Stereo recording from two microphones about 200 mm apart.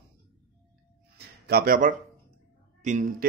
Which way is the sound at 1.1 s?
50° right (ahead or behind).